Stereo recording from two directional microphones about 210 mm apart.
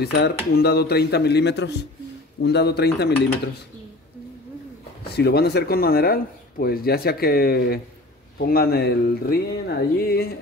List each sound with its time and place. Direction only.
0.0 s speech: 50° left (ahead or behind)
5.1 s speech: 50° left (ahead or behind)